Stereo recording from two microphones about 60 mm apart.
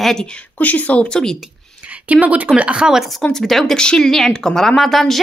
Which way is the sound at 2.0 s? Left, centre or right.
Right.